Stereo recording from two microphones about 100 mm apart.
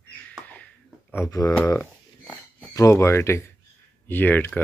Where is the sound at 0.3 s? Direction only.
10° left (ahead or behind).